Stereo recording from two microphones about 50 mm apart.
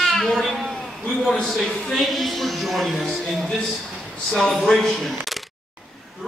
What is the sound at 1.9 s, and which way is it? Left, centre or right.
Speech, centre.